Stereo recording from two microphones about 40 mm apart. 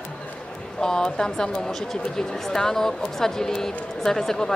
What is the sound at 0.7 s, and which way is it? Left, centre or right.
Speech, centre.